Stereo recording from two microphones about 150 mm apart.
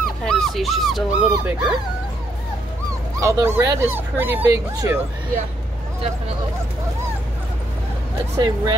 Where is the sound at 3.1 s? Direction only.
20° right (ahead or behind).